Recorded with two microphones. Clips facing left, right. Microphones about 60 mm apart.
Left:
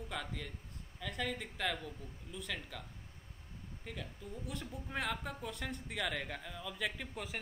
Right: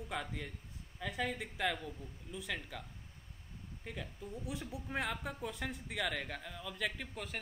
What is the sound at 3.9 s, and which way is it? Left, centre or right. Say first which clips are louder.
Speech: right 1 dB; centre.